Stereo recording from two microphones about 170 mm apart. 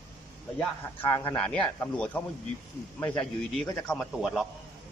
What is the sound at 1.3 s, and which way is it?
Speech, 10° left (ahead or behind).